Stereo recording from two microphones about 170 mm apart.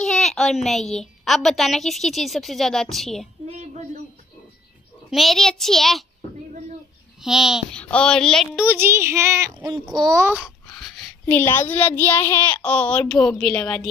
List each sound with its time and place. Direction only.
0.0 s a sound: centre (ahead or behind)
0.7 s a woman's voice: centre (ahead or behind)
3.4 s a sound: 40° right (ahead or behind)
5.1 s a woman's voice: centre (ahead or behind)
7.2 s a woman's voice: 5° right (ahead or behind)
8.6 s speech: 15° right (ahead or behind)
10.4 s a child's voice: centre (ahead or behind)